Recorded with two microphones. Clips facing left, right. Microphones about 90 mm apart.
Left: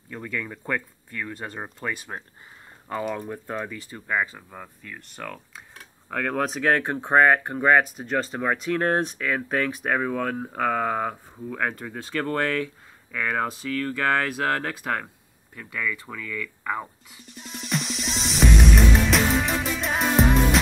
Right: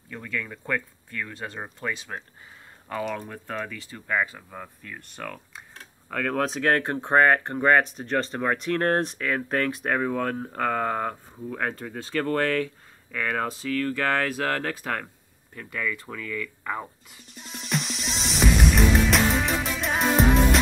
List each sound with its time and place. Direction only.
0.1 s speech: 20° left (ahead or behind)
4.4 s speech: centre (ahead or behind)
11.8 s speech: 25° left (ahead or behind)
13.1 s speech: 10° left (ahead or behind)
15.6 s speech: 5° right (ahead or behind)
17.4 s music: centre (ahead or behind)